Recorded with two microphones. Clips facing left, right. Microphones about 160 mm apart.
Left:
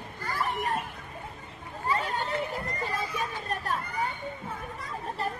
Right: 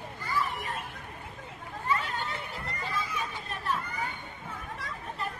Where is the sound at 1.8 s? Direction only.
40° left (ahead or behind).